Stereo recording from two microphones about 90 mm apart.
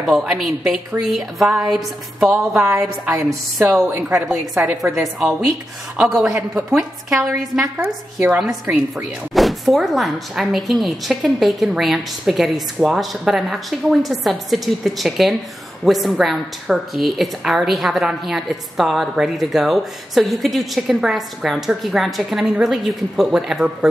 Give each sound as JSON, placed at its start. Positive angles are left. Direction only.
{"t": 0.0, "sound": "a woman's voice", "side_deg": -5}
{"t": 3.8, "sound": "a woman's voice", "side_deg": -35}
{"t": 4.3, "sound": "a woman's voice", "side_deg": 0}
{"t": 8.6, "sound": "speech", "side_deg": 0}